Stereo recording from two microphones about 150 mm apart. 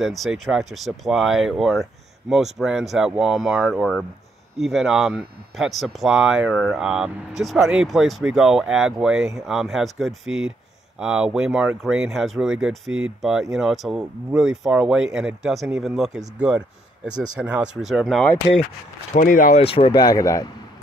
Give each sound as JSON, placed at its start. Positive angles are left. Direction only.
{"t": 0.0, "sound": "speech", "side_deg": 0}
{"t": 19.1, "sound": "speech", "side_deg": 65}
{"t": 19.6, "sound": "speech", "side_deg": 40}
{"t": 20.0, "sound": "speech", "side_deg": 25}